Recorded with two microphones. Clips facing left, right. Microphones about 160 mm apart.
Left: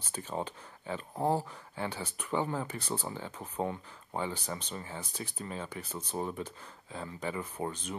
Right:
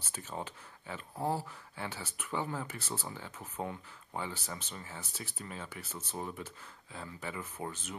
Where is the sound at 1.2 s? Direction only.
15° left (ahead or behind).